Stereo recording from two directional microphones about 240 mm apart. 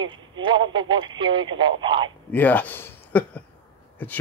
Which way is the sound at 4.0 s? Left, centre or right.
Centre.